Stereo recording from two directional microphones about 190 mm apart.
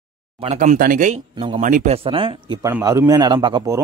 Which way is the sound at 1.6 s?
40° right (ahead or behind).